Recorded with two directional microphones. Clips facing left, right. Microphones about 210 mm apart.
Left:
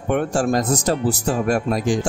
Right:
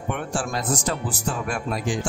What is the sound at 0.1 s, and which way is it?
Speech, 40° left (ahead or behind).